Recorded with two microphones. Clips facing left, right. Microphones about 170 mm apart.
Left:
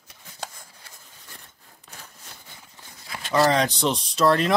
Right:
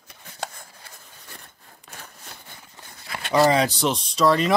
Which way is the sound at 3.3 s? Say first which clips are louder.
Right 2 dB; 10° right (ahead or behind).